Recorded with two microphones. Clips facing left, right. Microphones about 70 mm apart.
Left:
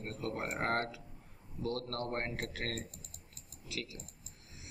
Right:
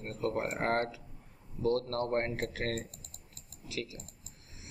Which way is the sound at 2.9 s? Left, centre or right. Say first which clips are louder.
Even; right.